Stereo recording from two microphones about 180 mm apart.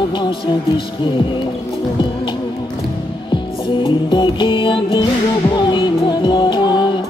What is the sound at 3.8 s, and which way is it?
Music, 25° left (ahead or behind).